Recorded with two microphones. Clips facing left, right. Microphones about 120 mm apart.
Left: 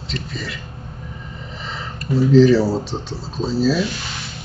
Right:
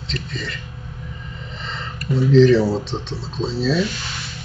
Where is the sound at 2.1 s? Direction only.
5° left (ahead or behind).